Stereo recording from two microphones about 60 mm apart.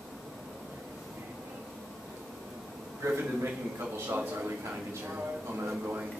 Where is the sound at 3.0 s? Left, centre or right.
Right.